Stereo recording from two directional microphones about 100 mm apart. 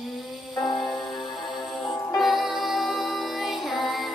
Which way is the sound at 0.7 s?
45° left (ahead or behind).